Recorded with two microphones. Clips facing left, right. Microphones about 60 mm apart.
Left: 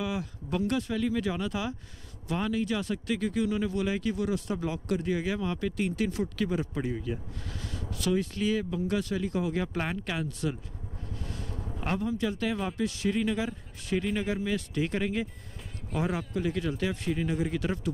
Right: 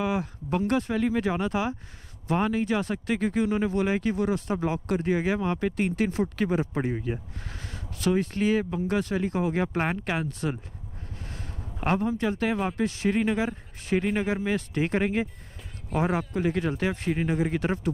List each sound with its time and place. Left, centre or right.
0.0 s speech: right
11.1 s vehicle: right
11.8 s speech: right
16.3 s speech: right